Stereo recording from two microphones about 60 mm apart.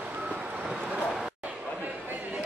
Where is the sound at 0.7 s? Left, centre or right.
Centre.